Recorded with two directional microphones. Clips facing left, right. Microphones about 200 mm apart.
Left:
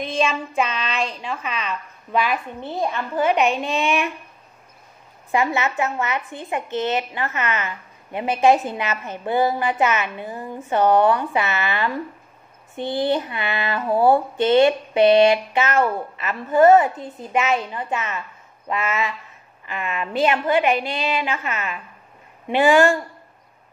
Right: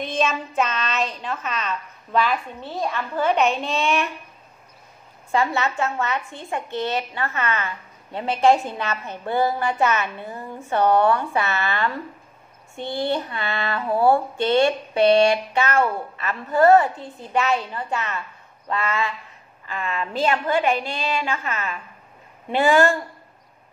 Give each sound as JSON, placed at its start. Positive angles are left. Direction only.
{"t": 0.5, "sound": "a woman's voice", "side_deg": 10}
{"t": 5.3, "sound": "a woman's voice", "side_deg": 15}